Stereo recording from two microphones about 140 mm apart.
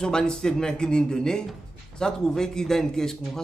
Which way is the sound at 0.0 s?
5° left (ahead or behind).